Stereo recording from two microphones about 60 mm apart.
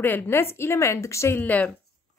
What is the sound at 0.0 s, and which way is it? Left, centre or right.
A woman's voice, left.